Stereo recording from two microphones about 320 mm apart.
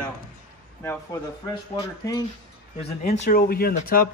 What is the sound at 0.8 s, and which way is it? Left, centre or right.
Speech, centre.